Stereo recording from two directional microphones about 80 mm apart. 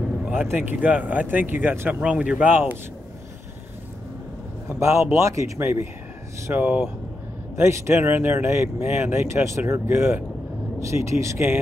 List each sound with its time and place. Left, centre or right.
0.2 s speech: right
4.6 s speech: right
5.6 s speech: right
7.5 s speech: right